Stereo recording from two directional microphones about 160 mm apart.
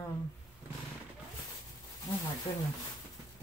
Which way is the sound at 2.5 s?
30° left (ahead or behind).